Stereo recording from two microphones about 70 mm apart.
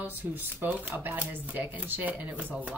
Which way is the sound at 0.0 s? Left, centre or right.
Right.